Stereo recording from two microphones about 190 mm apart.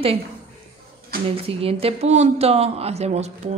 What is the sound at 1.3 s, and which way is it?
A woman's voice, 30° right (ahead or behind).